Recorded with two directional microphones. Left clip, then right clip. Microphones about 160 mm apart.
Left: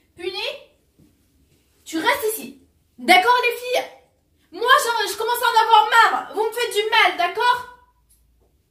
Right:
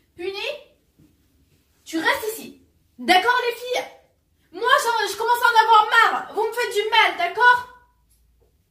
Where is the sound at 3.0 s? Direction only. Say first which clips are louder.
Left 3 dB; 20° left (ahead or behind).